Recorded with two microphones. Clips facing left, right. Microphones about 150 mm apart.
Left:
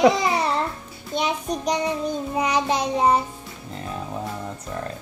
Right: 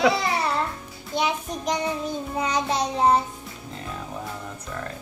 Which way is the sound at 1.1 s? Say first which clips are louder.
Even; 20° left (ahead or behind).